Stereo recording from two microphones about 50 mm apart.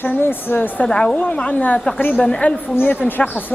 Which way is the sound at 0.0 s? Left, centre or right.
Left.